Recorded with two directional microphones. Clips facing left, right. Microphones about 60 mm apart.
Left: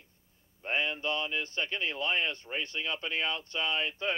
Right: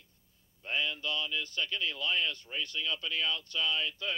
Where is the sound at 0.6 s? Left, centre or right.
Left.